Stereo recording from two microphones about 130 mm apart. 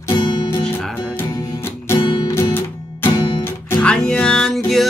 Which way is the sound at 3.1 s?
35° left (ahead or behind).